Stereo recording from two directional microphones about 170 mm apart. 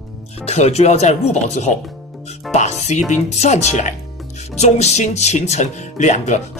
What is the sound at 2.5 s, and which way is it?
Music, 40° left (ahead or behind).